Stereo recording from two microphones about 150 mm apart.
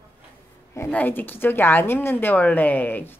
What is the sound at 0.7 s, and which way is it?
A woman's voice, 15° left (ahead or behind).